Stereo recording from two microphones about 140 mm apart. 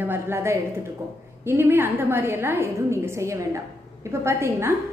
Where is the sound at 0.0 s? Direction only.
15° right (ahead or behind).